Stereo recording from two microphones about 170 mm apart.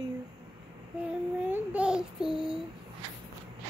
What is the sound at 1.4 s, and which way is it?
Child singing, 5° right (ahead or behind).